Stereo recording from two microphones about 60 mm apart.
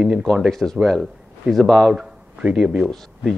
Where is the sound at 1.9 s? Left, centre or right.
Centre.